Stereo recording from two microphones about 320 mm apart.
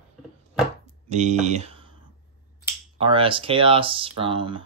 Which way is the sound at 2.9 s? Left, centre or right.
Centre.